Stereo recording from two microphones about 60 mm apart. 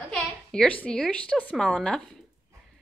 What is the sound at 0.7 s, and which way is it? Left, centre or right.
A woman's voice, left.